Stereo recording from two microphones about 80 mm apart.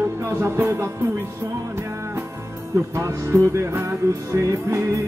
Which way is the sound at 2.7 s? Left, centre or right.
Right.